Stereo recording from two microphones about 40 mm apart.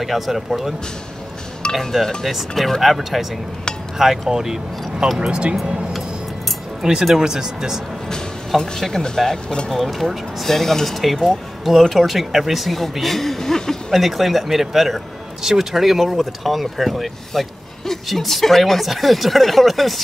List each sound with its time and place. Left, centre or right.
0.0 s speech: centre
1.7 s speech: centre
4.3 s speech: centre
5.2 s speech: right
6.8 s speech: centre
8.7 s speech: centre
13.9 s speech: centre